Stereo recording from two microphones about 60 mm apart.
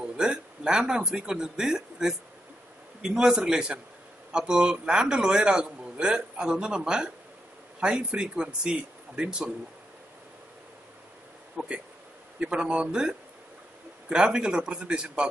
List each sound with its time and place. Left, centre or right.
0.0 s a man's voice: centre
11.5 s a man's voice: centre